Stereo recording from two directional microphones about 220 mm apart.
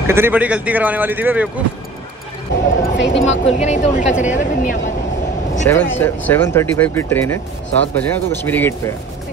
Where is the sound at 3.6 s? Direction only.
35° left (ahead or behind).